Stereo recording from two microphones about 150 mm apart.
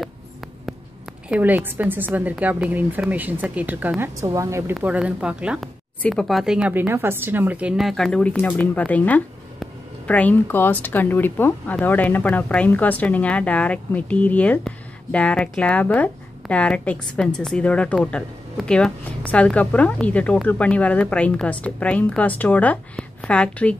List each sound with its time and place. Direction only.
1.3 s a woman's voice: 10° right (ahead or behind)
4.7 s a woman's voice: 5° right (ahead or behind)